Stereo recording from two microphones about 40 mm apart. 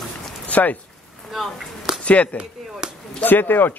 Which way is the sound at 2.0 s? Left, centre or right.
Left.